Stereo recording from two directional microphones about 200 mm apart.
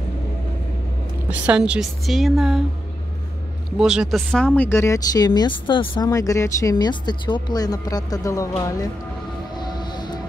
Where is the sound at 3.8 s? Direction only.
5° right (ahead or behind); by 8.9 s 15° left (ahead or behind).